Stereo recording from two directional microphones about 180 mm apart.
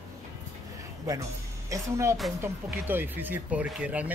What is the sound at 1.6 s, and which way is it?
Speech, 15° right (ahead or behind).